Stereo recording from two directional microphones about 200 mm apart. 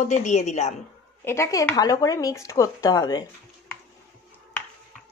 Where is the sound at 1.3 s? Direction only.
15° left (ahead or behind).